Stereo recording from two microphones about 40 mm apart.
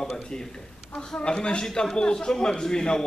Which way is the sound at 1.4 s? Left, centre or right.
Centre.